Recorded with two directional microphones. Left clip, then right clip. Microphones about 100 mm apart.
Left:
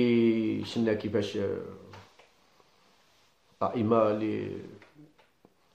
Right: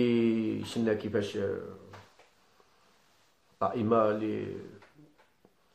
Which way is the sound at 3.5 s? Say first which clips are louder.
Left 1 dB; 25° left (ahead or behind).